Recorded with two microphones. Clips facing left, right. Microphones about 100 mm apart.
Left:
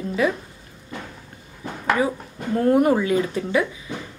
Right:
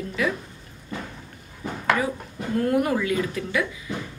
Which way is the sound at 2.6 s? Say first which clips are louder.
Left 5 dB; 30° left (ahead or behind).